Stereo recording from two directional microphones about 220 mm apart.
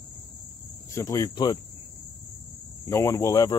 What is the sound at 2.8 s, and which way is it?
Speech, 15° left (ahead or behind).